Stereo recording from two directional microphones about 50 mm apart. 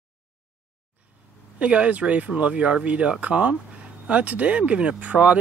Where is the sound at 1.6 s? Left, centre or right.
Right.